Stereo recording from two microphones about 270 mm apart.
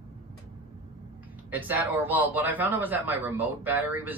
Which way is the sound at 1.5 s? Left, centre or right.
Centre.